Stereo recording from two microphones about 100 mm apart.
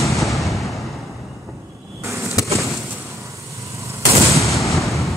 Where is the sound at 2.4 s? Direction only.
35° left (ahead or behind).